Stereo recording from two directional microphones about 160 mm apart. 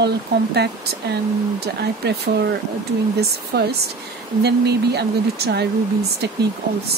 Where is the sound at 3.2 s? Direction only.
90° right.